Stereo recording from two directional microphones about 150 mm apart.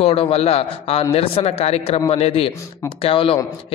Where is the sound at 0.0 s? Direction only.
40° left (ahead or behind).